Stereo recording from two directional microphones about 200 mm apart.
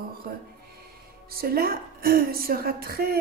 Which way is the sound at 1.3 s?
50° right (ahead or behind).